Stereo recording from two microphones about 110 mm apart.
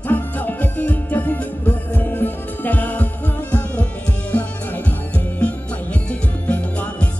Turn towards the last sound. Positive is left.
turn(degrees=15)  # may be behind; listen again after turning